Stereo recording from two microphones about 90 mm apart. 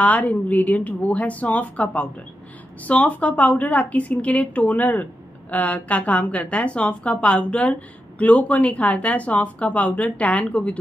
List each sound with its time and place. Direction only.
0.0 s speech: 15° left (ahead or behind)